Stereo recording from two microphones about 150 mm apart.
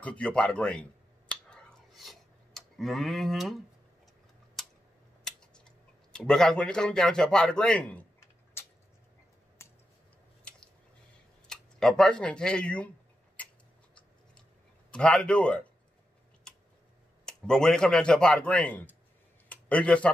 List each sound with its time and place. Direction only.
0.0 s a man's voice: 10° left (ahead or behind)
1.5 s a sound: centre (ahead or behind)
4.6 s a sound: centre (ahead or behind)
5.2 s tick-tock: 5° left (ahead or behind)
6.1 s a man's voice: 5° left (ahead or behind)
9.6 s a sound: 15° left (ahead or behind)
11.4 s speech: 5° left (ahead or behind)
14.9 s a man's voice: 5° left (ahead or behind)
17.2 s a man's voice: 5° left (ahead or behind)